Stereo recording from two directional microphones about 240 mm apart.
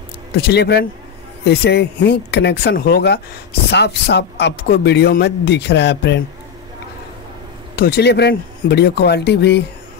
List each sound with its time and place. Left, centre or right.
0.4 s speech: left
7.7 s speech: left